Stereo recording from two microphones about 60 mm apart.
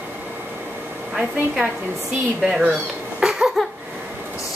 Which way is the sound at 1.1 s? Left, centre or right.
Centre.